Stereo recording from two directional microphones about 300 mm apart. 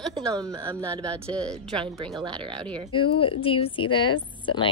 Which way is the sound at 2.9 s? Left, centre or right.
Centre.